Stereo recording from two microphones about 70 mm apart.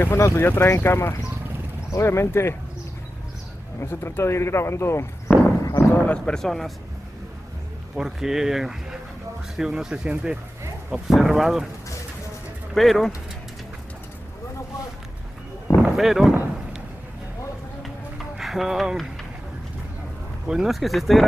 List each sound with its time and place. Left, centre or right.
0.0 s speech: left
3.8 s speech: left
5.3 s horse: left
6.1 s speech: centre
7.9 s speech: centre
11.1 s speech: centre
12.7 s speech: centre
15.8 s speech: centre
17.8 s run: centre
20.4 s speech: centre